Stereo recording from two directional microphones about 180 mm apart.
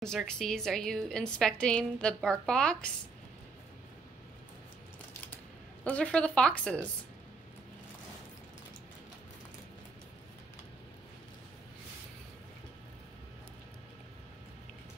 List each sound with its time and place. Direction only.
0.0 s a woman's voice: 5° left (ahead or behind)
5.9 s a woman's voice: 5° left (ahead or behind)